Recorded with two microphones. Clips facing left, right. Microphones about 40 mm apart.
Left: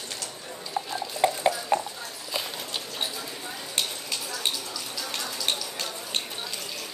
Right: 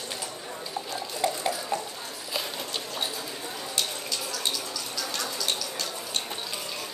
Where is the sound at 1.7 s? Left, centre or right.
Left.